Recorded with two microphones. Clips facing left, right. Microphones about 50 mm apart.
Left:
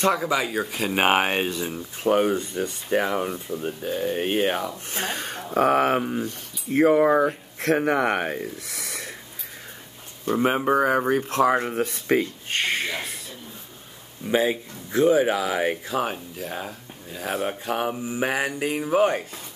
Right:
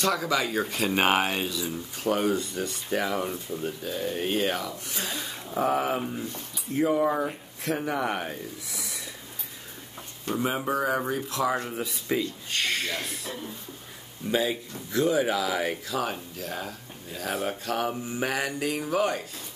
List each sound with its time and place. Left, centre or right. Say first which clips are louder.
0.0 s speech: left 3 dB; left
1.0 s speech: left 6 dB; left
10.4 s speech: left 6 dB; left
11.8 s speech: left 6 dB; left
14.3 s speech: left 4 dB; left